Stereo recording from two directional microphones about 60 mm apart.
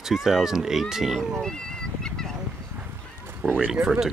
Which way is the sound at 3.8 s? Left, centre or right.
Centre.